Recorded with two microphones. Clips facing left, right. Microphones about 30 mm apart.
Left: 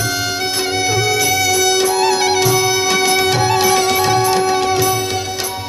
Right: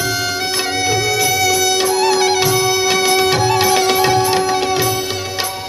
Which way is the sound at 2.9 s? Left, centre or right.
Right.